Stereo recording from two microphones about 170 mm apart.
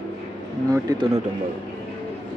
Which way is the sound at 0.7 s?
20° right (ahead or behind).